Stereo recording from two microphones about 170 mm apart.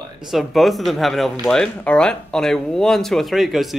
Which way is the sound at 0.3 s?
Centre (ahead or behind).